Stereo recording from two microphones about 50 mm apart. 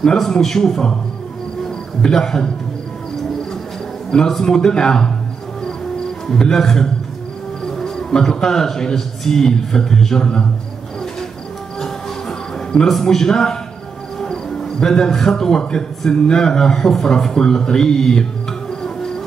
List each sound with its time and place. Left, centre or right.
0.0 s speech: centre
2.0 s speech: centre
4.3 s speech: centre
6.2 s a man's voice: centre
11.8 s music: centre
14.2 s speech: centre
18.7 s music: centre